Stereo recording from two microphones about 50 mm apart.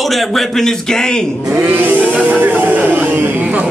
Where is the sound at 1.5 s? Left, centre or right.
Right.